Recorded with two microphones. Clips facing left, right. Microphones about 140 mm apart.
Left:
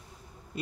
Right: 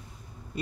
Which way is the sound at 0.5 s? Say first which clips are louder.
Right 2 dB; centre (ahead or behind).